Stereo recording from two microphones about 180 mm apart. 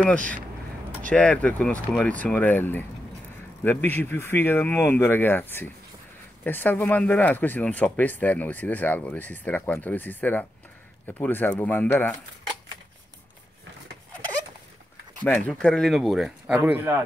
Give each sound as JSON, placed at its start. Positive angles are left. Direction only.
{"t": 1.1, "sound": "speech", "side_deg": 5}
{"t": 15.2, "sound": "speech", "side_deg": 10}